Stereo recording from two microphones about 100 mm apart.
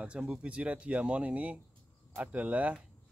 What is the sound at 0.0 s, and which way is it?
Speech, 10° right (ahead or behind).